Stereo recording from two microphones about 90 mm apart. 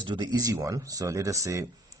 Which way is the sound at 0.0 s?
55° right (ahead or behind).